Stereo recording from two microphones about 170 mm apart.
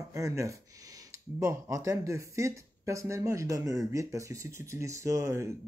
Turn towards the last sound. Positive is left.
turn(degrees=-20)  # may be behind; listen again after turning